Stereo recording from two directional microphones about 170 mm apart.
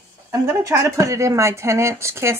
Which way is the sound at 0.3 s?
15° right (ahead or behind).